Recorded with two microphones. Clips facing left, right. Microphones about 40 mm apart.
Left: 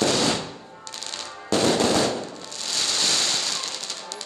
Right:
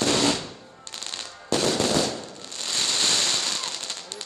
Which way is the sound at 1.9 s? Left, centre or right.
Left.